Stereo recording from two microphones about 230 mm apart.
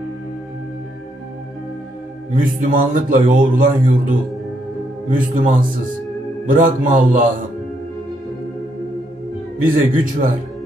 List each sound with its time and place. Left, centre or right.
2.3 s a man's voice: right
5.3 s a man's voice: right
9.6 s a man's voice: right